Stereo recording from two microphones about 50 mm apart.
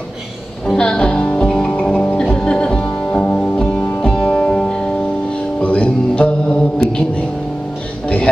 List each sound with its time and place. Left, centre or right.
0.7 s music: centre
5.6 s mantra: left